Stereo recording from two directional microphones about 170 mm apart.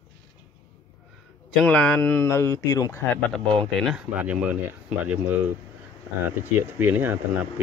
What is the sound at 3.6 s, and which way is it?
Speech, centre (ahead or behind).